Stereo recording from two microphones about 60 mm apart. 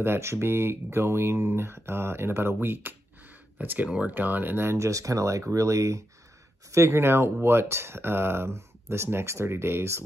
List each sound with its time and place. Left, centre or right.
0.0 s speech: right
4.7 s speech: right
6.7 s speech: right